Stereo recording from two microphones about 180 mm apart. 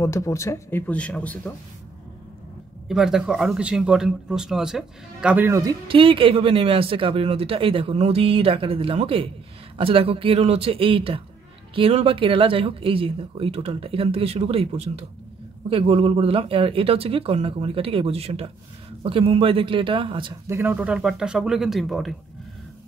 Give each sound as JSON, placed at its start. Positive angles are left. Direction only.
{"t": 0.0, "sound": "speech", "side_deg": 15}
{"t": 2.9, "sound": "speech", "side_deg": 0}
{"t": 20.4, "sound": "speech", "side_deg": -10}